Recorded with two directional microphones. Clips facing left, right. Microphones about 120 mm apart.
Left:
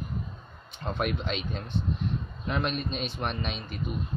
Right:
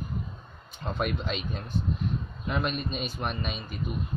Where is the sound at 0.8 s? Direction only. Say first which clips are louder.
Even; centre (ahead or behind).